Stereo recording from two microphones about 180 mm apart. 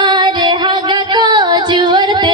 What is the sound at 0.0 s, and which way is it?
Music, 25° right (ahead or behind).